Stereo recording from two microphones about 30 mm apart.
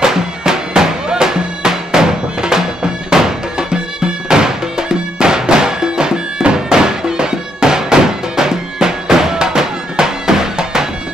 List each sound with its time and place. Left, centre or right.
0.0 s music: right